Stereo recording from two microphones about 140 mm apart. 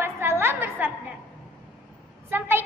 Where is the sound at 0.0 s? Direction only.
15° right (ahead or behind).